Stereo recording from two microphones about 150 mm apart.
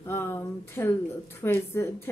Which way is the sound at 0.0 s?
15° left (ahead or behind).